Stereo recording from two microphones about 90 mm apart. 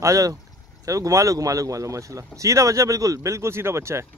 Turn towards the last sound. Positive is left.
turn(degrees=-30)  # may be behind; listen again after turning